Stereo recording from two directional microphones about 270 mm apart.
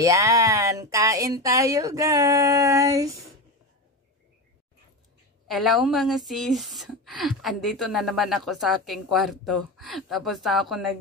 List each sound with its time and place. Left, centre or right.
0.0 s speech: centre
5.5 s speech: centre